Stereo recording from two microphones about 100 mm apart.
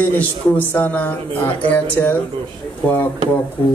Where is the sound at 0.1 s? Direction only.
15° left (ahead or behind).